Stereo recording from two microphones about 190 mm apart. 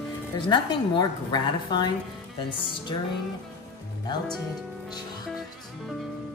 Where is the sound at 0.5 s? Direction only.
25° left (ahead or behind).